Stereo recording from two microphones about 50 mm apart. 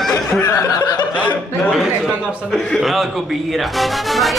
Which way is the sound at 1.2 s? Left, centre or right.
Left.